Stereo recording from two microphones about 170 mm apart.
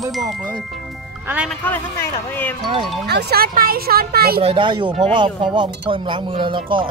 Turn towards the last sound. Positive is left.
turn(degrees=-30)  # may be behind; listen again after turning